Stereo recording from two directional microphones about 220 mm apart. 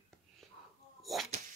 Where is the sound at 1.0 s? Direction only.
Centre (ahead or behind).